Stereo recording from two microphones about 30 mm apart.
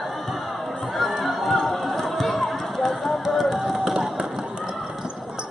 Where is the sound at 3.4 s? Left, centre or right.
Centre.